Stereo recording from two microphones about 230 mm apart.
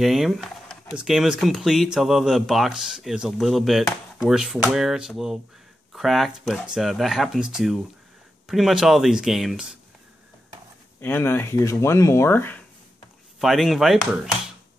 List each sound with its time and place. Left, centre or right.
0.0 s speech: centre
11.0 s speech: centre